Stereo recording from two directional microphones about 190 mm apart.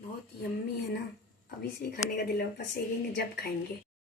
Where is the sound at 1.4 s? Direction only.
55° left (ahead or behind).